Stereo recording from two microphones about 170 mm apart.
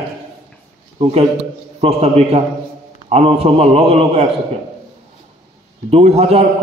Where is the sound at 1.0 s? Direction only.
35° right (ahead or behind).